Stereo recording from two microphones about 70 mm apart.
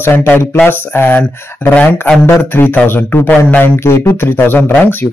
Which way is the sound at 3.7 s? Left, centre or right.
Left.